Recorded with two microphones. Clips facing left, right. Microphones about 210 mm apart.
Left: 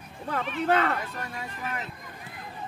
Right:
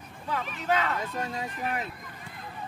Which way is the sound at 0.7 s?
55° left (ahead or behind).